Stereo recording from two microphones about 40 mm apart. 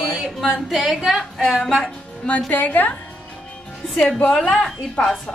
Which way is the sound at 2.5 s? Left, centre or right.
Left.